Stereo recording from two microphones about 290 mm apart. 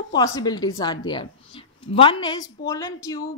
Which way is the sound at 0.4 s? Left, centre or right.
Centre.